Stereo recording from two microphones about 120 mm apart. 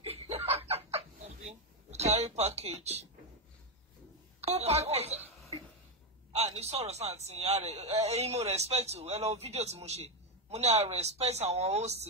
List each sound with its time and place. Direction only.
0.0 s a sound: 55° right (ahead or behind)
1.5 s speech: 65° right (ahead or behind)
4.4 s a woman's voice: 60° right (ahead or behind)
6.3 s a man's voice: 60° right (ahead or behind)